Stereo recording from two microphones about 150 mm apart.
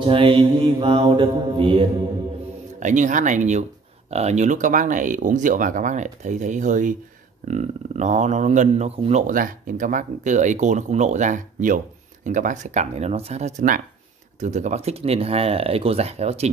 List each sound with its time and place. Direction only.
0.0 s mantra: 35° right (ahead or behind)
2.7 s speech: 55° right (ahead or behind)
9.3 s speech: 65° right (ahead or behind); by 16.4 s 45° right (ahead or behind)